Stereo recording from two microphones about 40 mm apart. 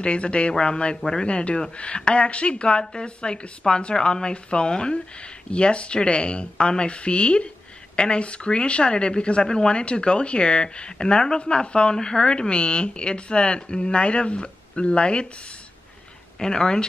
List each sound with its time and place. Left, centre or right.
0.0 s speech: left
16.3 s speech: centre